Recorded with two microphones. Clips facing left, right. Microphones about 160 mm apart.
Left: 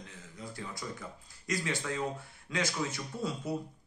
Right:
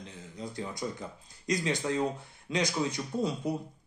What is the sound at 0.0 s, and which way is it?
Speech, 20° right (ahead or behind).